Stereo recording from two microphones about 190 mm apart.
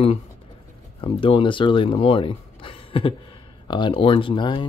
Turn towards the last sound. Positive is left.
turn(degrees=25)  # may be behind; listen again after turning